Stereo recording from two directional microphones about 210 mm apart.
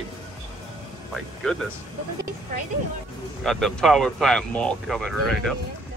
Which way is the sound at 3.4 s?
Centre (ahead or behind).